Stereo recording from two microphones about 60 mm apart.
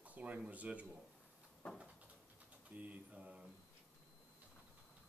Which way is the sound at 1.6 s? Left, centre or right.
Left.